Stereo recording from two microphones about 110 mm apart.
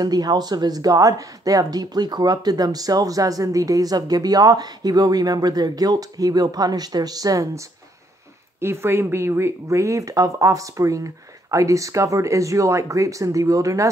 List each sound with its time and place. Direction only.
0.0 s speech: 35° right (ahead or behind)
8.5 s speech: 20° right (ahead or behind)